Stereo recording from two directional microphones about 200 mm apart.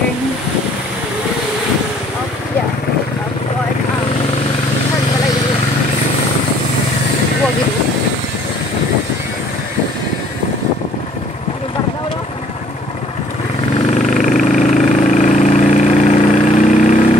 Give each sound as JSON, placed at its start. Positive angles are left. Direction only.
{"t": 14.0, "sound": "vehicle", "side_deg": 40}